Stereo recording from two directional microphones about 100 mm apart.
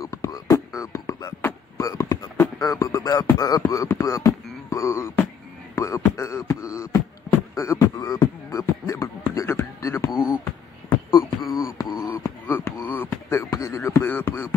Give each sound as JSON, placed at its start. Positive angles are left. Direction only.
{"t": 0.0, "sound": "beatboxing", "side_deg": 35}
{"t": 12.2, "sound": "beatboxing", "side_deg": 25}
{"t": 12.8, "sound": "a sound", "side_deg": 20}
{"t": 13.3, "sound": "beatboxing", "side_deg": 35}